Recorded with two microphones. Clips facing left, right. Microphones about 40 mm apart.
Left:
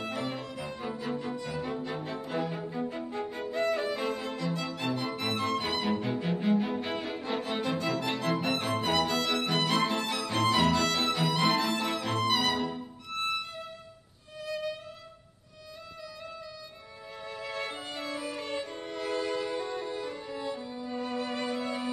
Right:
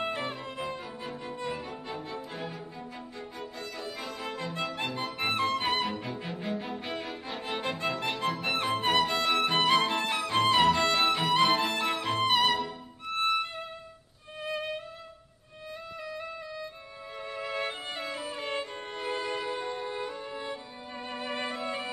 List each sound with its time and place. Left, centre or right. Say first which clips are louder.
0.0 s music: right 1 dB; right
1.7 s music: left 3 dB; left
4.2 s music: left 1 dB; right
6.1 s music: left 7 dB; centre
7.8 s music: even; right
13.1 s violin: right 5 dB; right
14.4 s music: right 1 dB; right
17.4 s music: right 3 dB; right